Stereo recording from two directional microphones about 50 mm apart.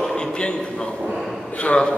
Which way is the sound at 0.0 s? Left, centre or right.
Centre.